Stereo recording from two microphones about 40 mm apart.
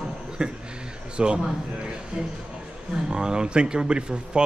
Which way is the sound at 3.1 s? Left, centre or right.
Centre.